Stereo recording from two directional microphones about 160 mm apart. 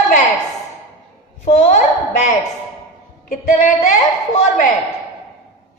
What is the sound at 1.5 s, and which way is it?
Speech, 45° left (ahead or behind).